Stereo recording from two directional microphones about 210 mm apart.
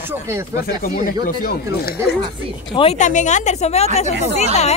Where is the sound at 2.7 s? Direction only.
30° left (ahead or behind).